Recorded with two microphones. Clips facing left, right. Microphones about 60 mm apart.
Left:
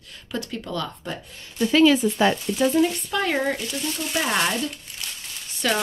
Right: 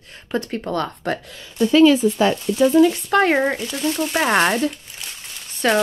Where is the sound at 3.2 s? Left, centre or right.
Right.